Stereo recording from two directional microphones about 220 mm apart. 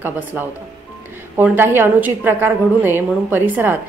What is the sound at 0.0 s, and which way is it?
A woman's voice, 10° right (ahead or behind).